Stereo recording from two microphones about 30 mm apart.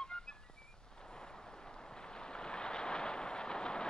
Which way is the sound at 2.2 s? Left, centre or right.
Left.